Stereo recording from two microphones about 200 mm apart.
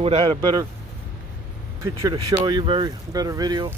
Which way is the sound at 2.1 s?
25° right (ahead or behind).